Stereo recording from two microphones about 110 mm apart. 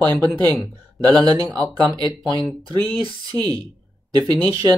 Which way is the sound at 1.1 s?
35° right (ahead or behind).